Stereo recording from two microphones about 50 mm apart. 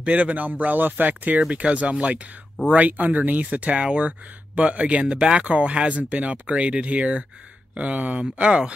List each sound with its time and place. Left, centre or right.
0.0 s speech: right
1.5 s speech: right